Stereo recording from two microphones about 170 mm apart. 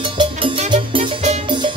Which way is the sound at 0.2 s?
30° right (ahead or behind).